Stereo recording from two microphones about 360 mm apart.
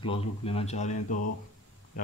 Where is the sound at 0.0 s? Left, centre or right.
Centre.